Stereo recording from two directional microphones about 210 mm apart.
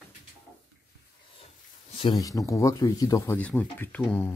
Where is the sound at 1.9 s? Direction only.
25° left (ahead or behind); by 4.4 s 10° left (ahead or behind).